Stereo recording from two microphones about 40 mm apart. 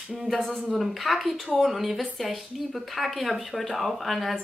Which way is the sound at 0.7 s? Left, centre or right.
Centre.